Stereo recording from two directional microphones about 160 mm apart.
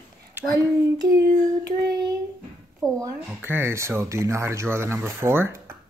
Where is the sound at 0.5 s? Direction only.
25° right (ahead or behind).